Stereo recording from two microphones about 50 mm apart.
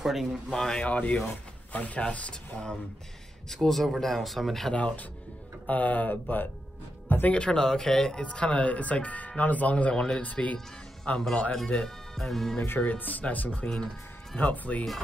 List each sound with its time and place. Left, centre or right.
0.0 s speech: centre
0.5 s speech: centre
0.8 s speech: left
2.0 s speech: left; by 4.7 s centre
4.7 s speech: left
7.2 s speech: centre
8.2 s speech: left
11.5 s speech: centre
12.8 s speech: left